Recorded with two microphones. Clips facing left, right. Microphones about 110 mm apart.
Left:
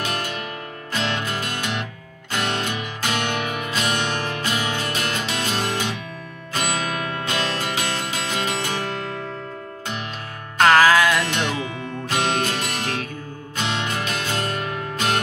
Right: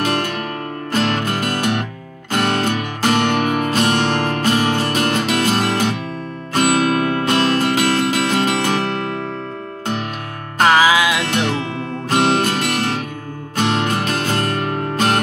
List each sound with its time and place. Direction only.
0.9 s music: 45° right (ahead or behind)
10.6 s music: 5° right (ahead or behind)
12.1 s music: 45° right (ahead or behind)